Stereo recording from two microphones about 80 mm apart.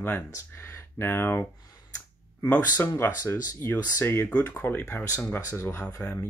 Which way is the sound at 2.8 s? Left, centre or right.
Left.